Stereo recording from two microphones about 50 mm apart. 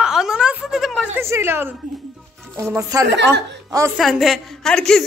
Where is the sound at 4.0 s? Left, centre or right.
Centre.